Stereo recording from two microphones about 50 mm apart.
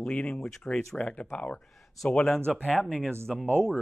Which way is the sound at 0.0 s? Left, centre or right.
Left.